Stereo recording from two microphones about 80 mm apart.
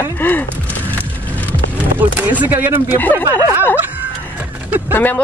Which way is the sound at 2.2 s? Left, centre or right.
Right.